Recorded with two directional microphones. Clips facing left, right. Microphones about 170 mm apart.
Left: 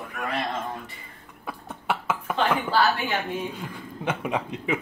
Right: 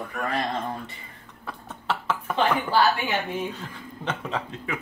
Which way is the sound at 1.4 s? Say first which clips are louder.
Left 1 dB; 10° left (ahead or behind).